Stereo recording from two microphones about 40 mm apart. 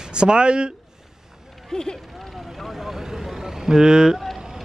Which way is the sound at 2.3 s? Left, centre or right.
Centre.